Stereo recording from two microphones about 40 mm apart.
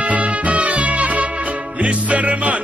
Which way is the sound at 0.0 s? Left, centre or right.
Right.